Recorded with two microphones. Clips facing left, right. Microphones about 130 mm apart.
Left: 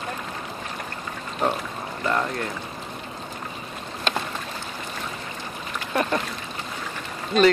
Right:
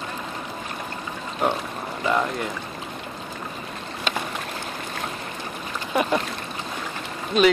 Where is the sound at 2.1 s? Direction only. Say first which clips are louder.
Right 2 dB; 10° right (ahead or behind).